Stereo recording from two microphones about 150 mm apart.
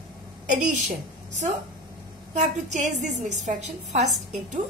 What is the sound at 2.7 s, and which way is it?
A woman's voice, 50° right (ahead or behind).